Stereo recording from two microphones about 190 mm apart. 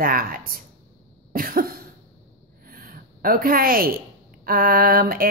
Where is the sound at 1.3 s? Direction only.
50° right (ahead or behind).